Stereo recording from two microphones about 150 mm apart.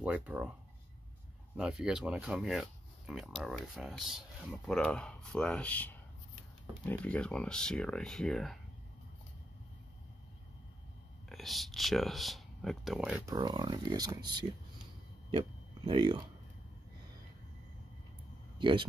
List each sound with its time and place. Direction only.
0.0 s speech: 10° right (ahead or behind)
1.6 s speech: 5° right (ahead or behind)
11.2 s speech: centre (ahead or behind)
13.2 s speech: 25° right (ahead or behind)
18.6 s speech: 35° right (ahead or behind)